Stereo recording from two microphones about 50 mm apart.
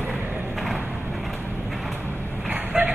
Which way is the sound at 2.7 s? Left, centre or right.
Centre.